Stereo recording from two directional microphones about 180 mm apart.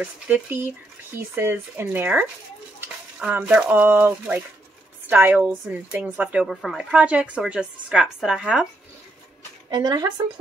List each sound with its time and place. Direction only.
0.0 s a woman's voice: 10° right (ahead or behind)
9.7 s speech: 20° right (ahead or behind)